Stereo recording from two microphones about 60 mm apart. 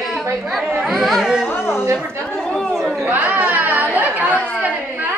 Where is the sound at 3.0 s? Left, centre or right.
Right.